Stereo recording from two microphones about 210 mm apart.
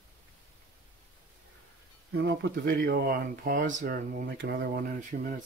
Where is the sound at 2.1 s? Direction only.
55° right (ahead or behind).